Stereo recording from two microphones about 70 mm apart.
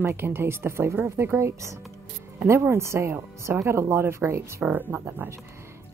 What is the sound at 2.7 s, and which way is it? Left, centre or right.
Speech, right.